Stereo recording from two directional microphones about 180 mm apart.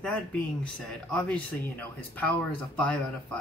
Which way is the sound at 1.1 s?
10° left (ahead or behind).